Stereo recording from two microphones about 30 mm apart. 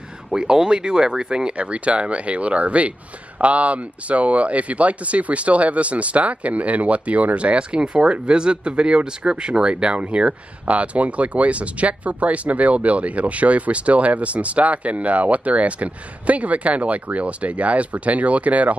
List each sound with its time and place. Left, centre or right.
0.4 s speech: right
1.6 s speech: right
7.3 s speech: right
10.6 s speech: right